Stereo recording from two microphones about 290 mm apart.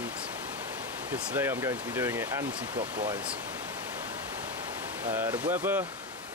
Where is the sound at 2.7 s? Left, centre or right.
Right.